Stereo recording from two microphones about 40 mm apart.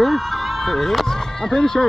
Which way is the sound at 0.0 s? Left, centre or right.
Centre.